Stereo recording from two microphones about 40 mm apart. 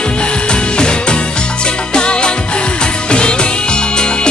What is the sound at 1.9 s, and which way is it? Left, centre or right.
Music, left.